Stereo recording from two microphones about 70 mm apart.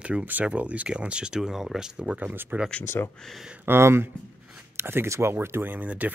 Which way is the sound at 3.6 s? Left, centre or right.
Right.